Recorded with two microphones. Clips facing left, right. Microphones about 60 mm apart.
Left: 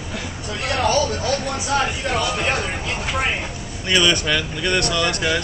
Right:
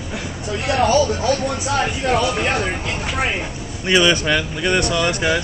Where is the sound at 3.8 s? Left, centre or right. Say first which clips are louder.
Right 3 dB; right.